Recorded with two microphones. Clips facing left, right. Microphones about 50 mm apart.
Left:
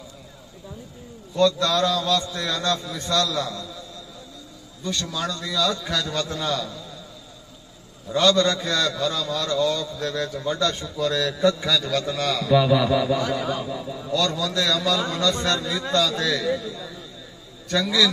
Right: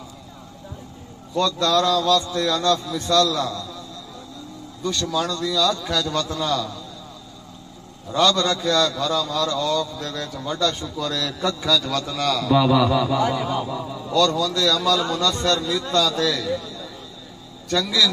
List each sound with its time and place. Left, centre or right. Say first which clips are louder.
1.4 s a man's voice: even; centre
5.2 s a man's voice: right 2 dB; left
8.1 s a sound: even; centre
8.5 s a man's voice: right 4 dB; left
12.4 s a sound: right 1 dB; centre
13.3 s a man's voice: right 2 dB; centre
13.7 s a man's voice: right 2 dB; centre
14.1 s a man's voice: right 4 dB; centre
17.6 s a sound: even; centre